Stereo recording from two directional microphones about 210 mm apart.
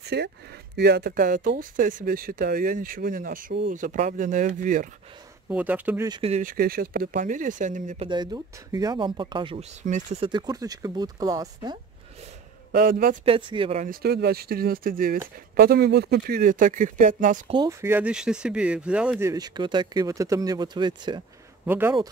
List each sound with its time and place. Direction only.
0.0 s speech: 50° right (ahead or behind)
5.5 s speech: 10° right (ahead or behind)
6.0 s speech: 20° right (ahead or behind)
6.3 s speech: 40° right (ahead or behind)
8.1 s speech: 20° right (ahead or behind); by 10.3 s 35° right (ahead or behind)
10.3 s speech: 20° right (ahead or behind)
12.7 s speech: 40° right (ahead or behind)
13.2 s speech: 25° right (ahead or behind)
13.8 s speech: 50° right (ahead or behind)
17.5 s speech: 15° right (ahead or behind)
21.6 s speech: 10° right (ahead or behind)